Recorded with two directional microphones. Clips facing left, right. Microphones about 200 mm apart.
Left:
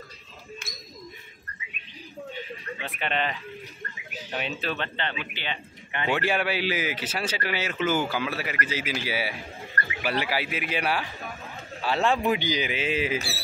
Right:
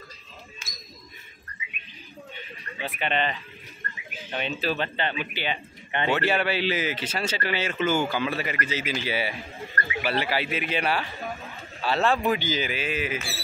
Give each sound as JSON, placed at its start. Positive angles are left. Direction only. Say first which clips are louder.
{"t": 0.6, "sound": "ping", "louder": "left 5 dB", "side_deg": 60}
{"t": 2.8, "sound": "speech", "louder": "right 2 dB", "side_deg": 0}
{"t": 6.0, "sound": "speech", "louder": "right 1 dB", "side_deg": 10}